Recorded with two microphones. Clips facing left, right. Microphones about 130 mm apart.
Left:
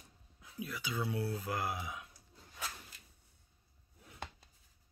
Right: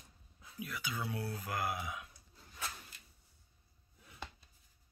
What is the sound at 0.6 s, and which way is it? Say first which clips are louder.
Speech: left 2 dB; 25° left (ahead or behind).